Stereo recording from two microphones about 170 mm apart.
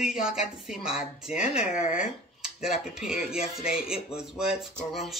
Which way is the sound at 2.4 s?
5° right (ahead or behind).